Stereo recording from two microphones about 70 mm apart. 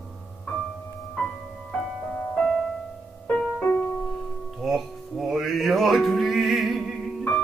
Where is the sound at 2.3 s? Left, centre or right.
Centre.